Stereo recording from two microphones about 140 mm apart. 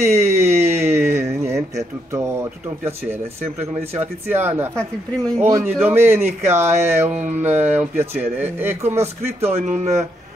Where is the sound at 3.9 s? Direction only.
15° right (ahead or behind).